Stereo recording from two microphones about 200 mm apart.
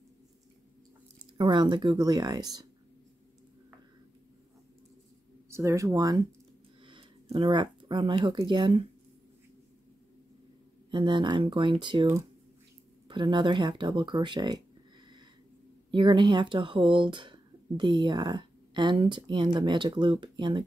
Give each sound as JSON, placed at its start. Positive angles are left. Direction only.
{"t": 1.4, "sound": "speech", "side_deg": -25}
{"t": 5.5, "sound": "speech", "side_deg": -15}
{"t": 10.9, "sound": "speech", "side_deg": -25}
{"t": 15.9, "sound": "speech", "side_deg": -25}